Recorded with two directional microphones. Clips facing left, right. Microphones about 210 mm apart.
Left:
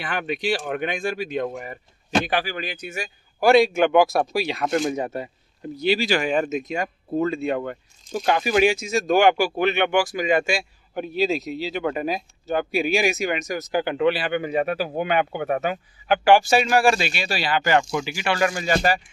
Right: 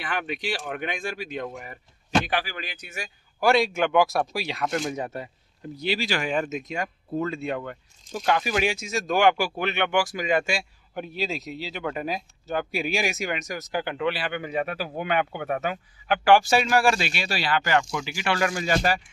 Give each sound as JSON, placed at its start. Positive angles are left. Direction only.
{"t": 0.0, "sound": "speech", "side_deg": 30}
{"t": 3.3, "sound": "a man's voice", "side_deg": 10}